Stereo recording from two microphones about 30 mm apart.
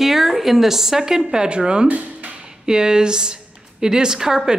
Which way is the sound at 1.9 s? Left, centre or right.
Right.